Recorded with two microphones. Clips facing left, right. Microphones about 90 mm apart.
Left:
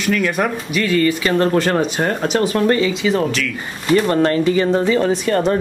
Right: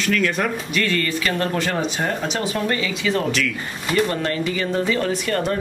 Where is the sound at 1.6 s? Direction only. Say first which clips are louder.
Left 6 dB; 50° left (ahead or behind).